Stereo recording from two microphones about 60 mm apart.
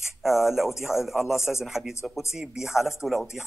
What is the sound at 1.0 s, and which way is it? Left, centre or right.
Speech, centre.